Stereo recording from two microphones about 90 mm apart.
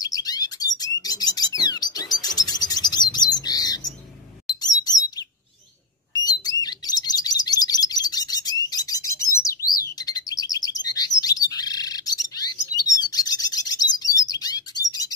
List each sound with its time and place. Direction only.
0.0 s bird: 45° left (ahead or behind)
4.6 s chirp: 45° left (ahead or behind)
6.2 s chirp: 45° left (ahead or behind)